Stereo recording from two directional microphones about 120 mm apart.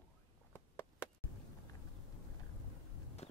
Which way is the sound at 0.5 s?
15° left (ahead or behind).